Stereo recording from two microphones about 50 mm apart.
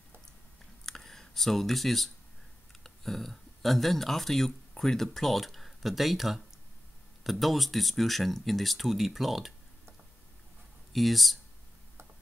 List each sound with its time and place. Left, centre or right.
0.8 s a sound: centre
2.7 s speech: centre
10.9 s speech: centre